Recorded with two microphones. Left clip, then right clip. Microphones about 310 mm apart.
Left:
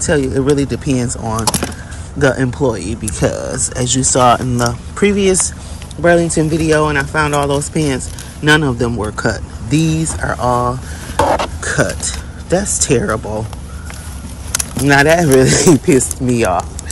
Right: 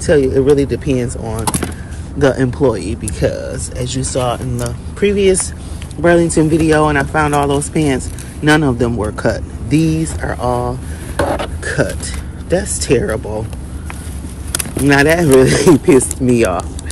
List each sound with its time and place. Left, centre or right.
0.0 s speech: centre
11.6 s speech: centre
14.9 s speech: centre